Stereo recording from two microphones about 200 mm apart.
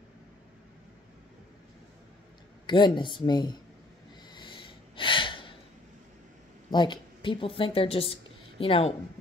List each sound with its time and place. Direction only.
2.6 s speech: 25° left (ahead or behind)
4.3 s snort: 25° left (ahead or behind)
6.7 s a woman's voice: 25° left (ahead or behind)